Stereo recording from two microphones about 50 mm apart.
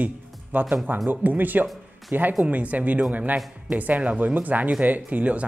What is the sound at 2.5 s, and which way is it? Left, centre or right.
Speech, right.